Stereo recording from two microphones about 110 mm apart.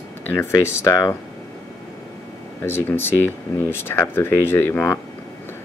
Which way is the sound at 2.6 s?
20° left (ahead or behind).